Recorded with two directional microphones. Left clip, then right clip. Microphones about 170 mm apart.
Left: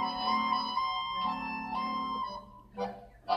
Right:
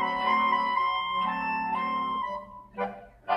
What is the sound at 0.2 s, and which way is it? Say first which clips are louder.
Music: right 6 dB; 15° right (ahead or behind).